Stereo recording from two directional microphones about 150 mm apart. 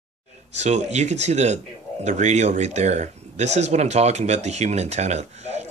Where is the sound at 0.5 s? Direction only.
50° right (ahead or behind).